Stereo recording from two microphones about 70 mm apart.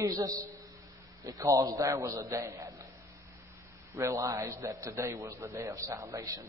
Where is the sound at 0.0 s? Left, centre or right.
Right.